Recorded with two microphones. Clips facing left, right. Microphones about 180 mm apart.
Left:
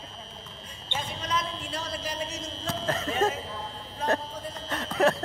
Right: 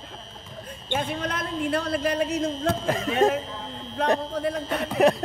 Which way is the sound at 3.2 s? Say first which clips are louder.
Right 6 dB; 15° right (ahead or behind).